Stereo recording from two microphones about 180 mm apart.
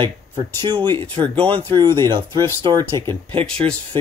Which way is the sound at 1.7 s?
25° right (ahead or behind).